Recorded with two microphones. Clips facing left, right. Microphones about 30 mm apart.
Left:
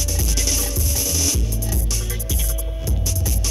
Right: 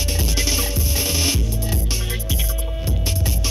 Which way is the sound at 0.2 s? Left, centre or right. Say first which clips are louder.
Right 2 dB; right.